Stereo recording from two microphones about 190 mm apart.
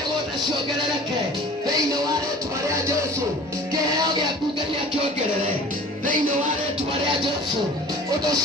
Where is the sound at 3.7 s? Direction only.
20° right (ahead or behind).